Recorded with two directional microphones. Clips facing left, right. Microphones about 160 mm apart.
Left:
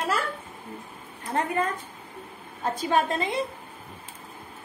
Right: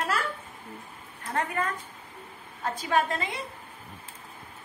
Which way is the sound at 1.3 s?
25° left (ahead or behind).